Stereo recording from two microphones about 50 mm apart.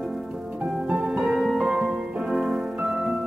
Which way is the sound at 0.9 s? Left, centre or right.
Centre.